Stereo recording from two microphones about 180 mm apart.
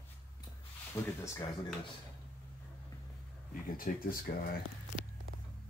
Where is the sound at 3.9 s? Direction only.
50° left (ahead or behind).